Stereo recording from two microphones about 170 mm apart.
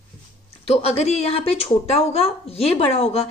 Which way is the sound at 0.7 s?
35° left (ahead or behind).